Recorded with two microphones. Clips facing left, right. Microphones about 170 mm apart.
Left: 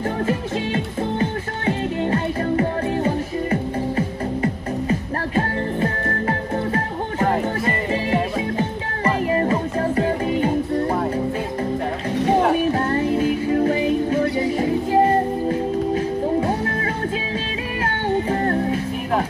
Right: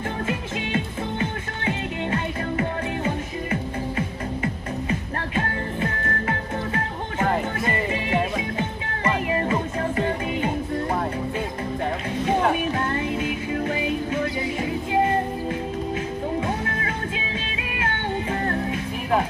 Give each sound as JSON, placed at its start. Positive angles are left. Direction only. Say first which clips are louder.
{"t": 1.7, "sound": "music", "louder": "left 5 dB", "side_deg": 40}
{"t": 4.4, "sound": "music", "louder": "left 5 dB", "side_deg": 35}
{"t": 12.7, "sound": "music", "louder": "left 5 dB", "side_deg": 35}